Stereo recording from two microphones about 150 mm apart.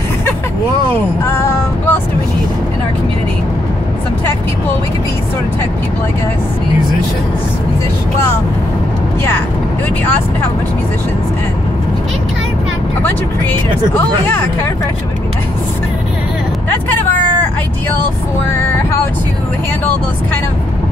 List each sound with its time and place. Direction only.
1.2 s music: 15° left (ahead or behind)
13.0 s speech: 15° left (ahead or behind)